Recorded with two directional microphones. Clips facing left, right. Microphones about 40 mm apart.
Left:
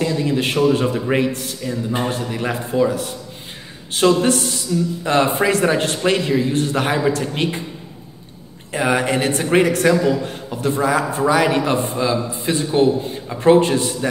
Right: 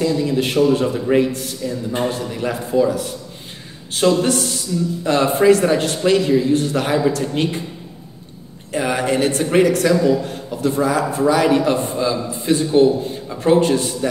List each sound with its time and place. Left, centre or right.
0.0 s a man's voice: left
1.3 s a man's voice: left
1.6 s a man's voice: left
4.0 s a man's voice: centre
5.0 s a man's voice: left
8.7 s a man's voice: left